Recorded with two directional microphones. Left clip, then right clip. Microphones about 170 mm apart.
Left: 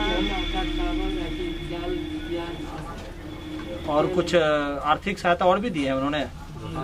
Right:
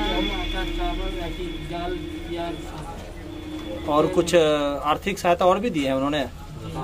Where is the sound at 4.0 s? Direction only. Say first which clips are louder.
Right 3 dB; 15° right (ahead or behind).